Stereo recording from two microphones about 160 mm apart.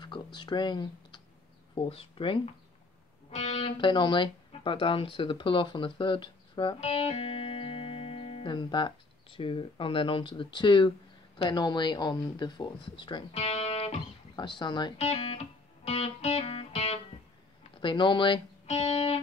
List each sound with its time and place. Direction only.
0.0 s typing: 30° left (ahead or behind)
1.8 s speech: 35° left (ahead or behind)
15.0 s music: 45° left (ahead or behind)
17.7 s speech: 30° left (ahead or behind)